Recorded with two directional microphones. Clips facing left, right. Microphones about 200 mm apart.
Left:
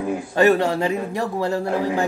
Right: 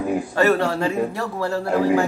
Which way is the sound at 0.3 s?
15° left (ahead or behind).